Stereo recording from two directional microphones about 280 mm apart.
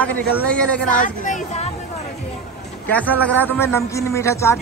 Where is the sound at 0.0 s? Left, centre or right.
Centre.